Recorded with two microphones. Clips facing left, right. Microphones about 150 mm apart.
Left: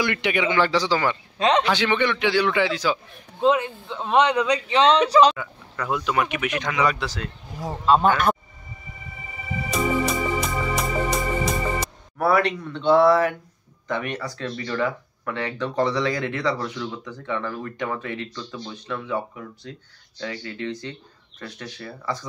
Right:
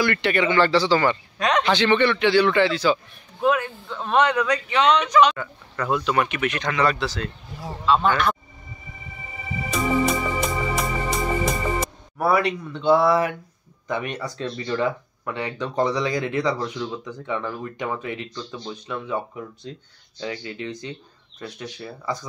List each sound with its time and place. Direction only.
0.0 s speech: 15° left (ahead or behind)
3.3 s speech: 20° left (ahead or behind)
5.4 s speech: 5° left (ahead or behind)
7.8 s speech: 45° left (ahead or behind)
9.7 s organ: centre (ahead or behind)
12.2 s speech: 10° right (ahead or behind)